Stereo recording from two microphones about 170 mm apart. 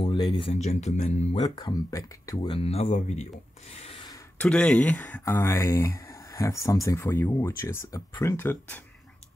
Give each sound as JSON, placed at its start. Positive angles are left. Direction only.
{"t": 0.0, "sound": "speech", "side_deg": 30}
{"t": 1.4, "sound": "speech", "side_deg": 25}
{"t": 2.5, "sound": "speech", "side_deg": 35}
{"t": 3.8, "sound": "a sound", "side_deg": 35}
{"t": 4.4, "sound": "speech", "side_deg": 5}